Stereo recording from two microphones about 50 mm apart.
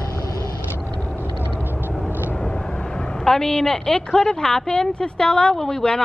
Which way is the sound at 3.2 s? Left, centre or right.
Centre.